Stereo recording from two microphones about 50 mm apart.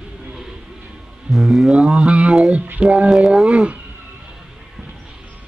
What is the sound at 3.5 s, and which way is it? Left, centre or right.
Speech, right.